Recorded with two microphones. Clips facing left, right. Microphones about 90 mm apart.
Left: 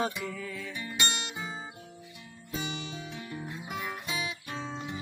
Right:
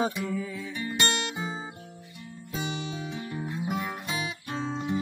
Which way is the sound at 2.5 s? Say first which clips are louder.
Right 3 dB; 40° right (ahead or behind).